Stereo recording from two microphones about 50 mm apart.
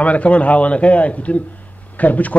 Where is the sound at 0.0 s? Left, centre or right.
Left.